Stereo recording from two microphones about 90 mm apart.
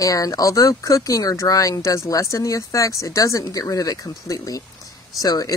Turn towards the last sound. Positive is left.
turn(degrees=45)  # may be behind; listen again after turning